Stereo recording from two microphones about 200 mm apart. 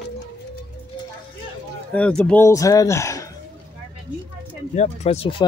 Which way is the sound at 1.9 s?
5° left (ahead or behind).